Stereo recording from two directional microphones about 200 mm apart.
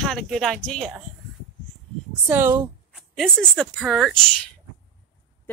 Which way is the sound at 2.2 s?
10° right (ahead or behind).